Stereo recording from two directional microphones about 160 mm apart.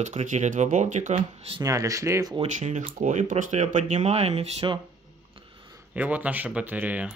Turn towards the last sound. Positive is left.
turn(degrees=-10)  # may be behind; listen again after turning